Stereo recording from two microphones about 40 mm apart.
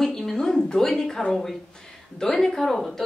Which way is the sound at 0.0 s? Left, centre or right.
Centre.